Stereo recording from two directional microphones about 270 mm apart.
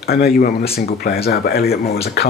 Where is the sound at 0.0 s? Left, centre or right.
Left.